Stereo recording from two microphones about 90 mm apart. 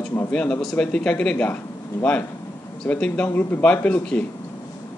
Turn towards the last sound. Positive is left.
turn(degrees=15)  # may be behind; listen again after turning